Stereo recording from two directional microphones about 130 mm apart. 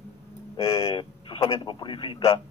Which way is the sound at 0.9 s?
40° left (ahead or behind).